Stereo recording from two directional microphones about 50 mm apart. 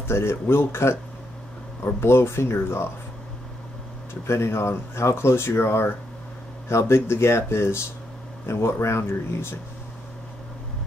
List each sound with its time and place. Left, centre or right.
0.1 s speech: left
2.0 s speech: left
4.1 s speech: left